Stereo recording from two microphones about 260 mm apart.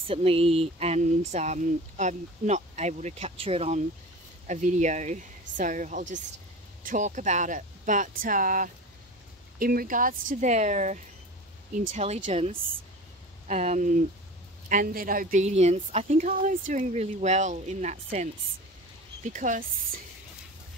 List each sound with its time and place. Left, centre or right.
0.0 s speech: right
19.3 s speech: right